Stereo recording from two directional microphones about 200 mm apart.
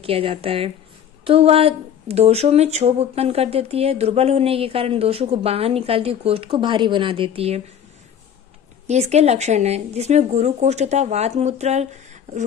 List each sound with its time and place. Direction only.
0.0 s speech: 30° right (ahead or behind)
8.8 s speech: 35° right (ahead or behind)